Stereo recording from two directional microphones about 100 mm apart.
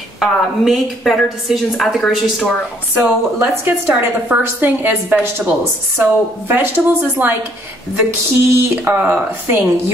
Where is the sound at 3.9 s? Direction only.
10° right (ahead or behind).